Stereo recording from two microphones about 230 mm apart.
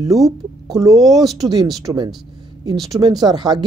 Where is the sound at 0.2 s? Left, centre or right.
Centre.